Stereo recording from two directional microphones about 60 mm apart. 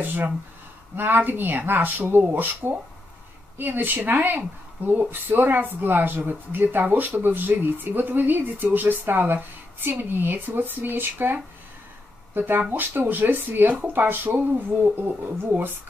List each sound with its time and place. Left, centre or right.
0.0 s speech: right